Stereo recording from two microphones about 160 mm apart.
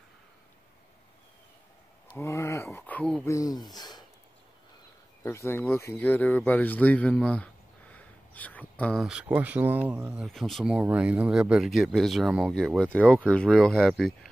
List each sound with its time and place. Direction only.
2.1 s speech: 15° left (ahead or behind)
3.3 s speech: 20° left (ahead or behind)
5.2 s speech: 15° left (ahead or behind)
7.9 s a sound: 10° left (ahead or behind)
9.0 s speech: 5° right (ahead or behind)